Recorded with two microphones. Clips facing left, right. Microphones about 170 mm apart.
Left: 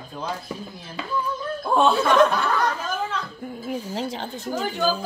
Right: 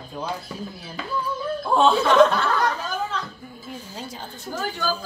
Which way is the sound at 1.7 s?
5° left (ahead or behind).